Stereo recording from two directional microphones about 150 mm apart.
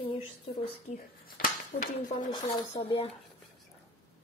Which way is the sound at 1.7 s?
65° left (ahead or behind).